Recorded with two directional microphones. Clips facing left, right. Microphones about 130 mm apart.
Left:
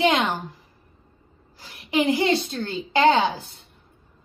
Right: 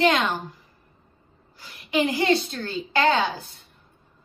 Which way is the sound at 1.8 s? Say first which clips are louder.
Left 1 dB; 25° left (ahead or behind).